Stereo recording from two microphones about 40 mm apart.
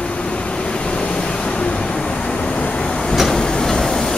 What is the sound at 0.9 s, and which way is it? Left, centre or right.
Waves, left.